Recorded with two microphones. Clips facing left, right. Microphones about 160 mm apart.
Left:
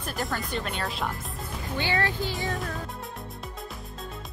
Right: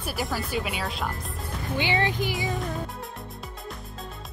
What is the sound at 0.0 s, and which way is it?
Speech, 5° right (ahead or behind).